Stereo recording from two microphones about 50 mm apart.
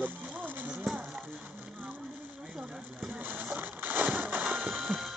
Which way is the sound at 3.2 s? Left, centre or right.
Right.